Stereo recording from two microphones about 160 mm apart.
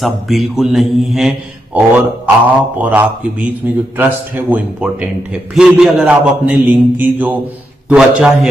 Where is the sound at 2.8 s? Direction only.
10° right (ahead or behind).